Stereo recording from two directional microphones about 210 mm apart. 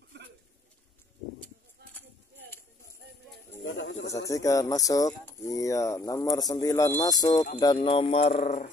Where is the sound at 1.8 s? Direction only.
50° right (ahead or behind).